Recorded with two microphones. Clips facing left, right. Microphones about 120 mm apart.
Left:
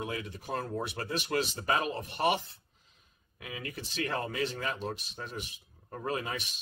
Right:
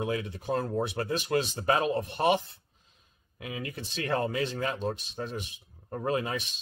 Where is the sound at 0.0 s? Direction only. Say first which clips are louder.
Right 6 dB; 25° right (ahead or behind).